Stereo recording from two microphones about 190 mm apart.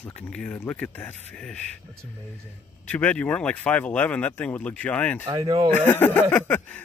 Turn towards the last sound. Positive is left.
turn(degrees=10)  # may be behind; listen again after turning